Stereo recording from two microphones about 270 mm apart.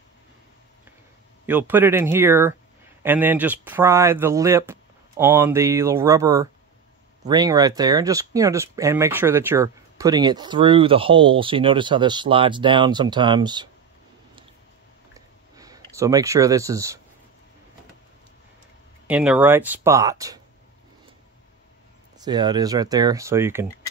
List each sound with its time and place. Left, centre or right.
1.4 s speech: centre
15.1 s a sound: centre
19.0 s speech: centre
22.2 s speech: centre